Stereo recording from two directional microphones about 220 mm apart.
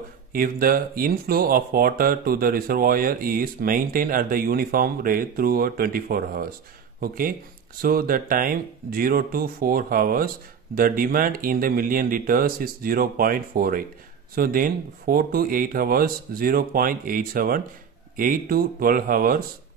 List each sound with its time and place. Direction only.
0.3 s speech: 40° right (ahead or behind)